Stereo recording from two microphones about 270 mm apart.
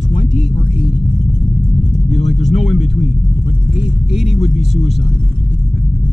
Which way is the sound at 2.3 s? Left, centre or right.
Left.